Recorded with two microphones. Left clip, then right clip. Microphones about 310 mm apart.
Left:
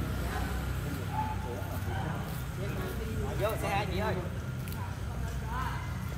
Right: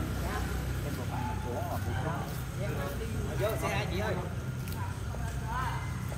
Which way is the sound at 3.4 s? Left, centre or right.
Centre.